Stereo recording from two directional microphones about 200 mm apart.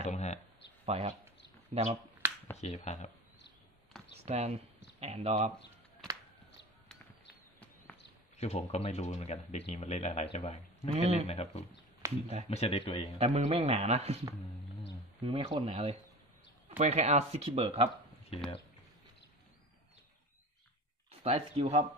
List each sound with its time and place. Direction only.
0.0 s a sound: 35° left (ahead or behind)
0.8 s speech: 30° right (ahead or behind)
2.5 s speech: 35° left (ahead or behind)
4.1 s a sound: 30° right (ahead or behind)
5.0 s speech: 30° right (ahead or behind)
8.4 s speech: 30° left (ahead or behind)
11.0 s speech: 30° right (ahead or behind)
11.2 s speech: 30° left (ahead or behind)
12.0 s a sound: 15° right (ahead or behind)
12.4 s a man's voice: 30° left (ahead or behind)
13.2 s speech: 30° right (ahead or behind)
15.2 s speech: 25° right (ahead or behind)
21.2 s speech: 30° right (ahead or behind)